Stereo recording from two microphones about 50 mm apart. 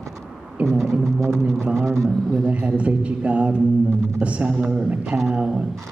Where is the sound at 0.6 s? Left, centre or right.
Right.